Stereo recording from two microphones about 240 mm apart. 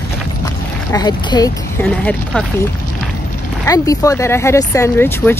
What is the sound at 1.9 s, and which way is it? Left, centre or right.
Speech, centre.